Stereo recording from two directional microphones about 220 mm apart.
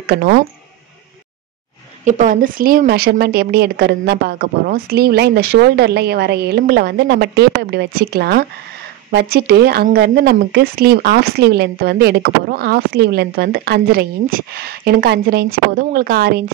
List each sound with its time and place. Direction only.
0.0 s speech: 45° right (ahead or behind)
2.0 s speech: 35° right (ahead or behind)